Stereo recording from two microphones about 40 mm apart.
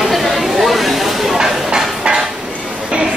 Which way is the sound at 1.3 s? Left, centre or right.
Centre.